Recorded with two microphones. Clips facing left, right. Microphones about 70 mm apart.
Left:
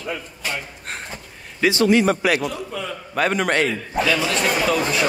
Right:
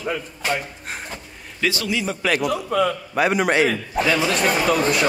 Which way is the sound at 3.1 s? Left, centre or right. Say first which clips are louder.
Left 1 dB; centre.